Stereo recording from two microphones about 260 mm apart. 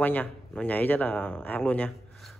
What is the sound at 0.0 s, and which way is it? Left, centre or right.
A man's voice, centre.